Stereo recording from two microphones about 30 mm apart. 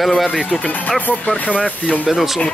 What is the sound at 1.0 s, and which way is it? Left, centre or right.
Speech, left.